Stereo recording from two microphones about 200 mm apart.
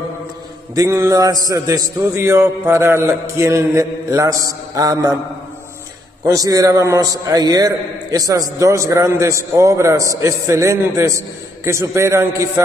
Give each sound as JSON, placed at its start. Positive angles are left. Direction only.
{"t": 0.7, "sound": "a man's voice", "side_deg": -15}
{"t": 6.2, "sound": "a man's voice", "side_deg": -15}